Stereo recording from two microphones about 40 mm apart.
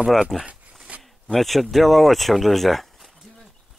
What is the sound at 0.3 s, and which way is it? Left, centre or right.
Speech, centre.